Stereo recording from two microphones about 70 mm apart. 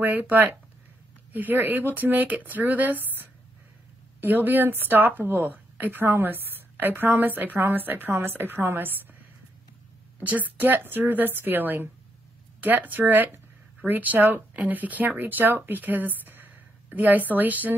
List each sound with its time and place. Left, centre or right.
0.0 s speech: right
4.3 s speech: right
10.1 s speech: right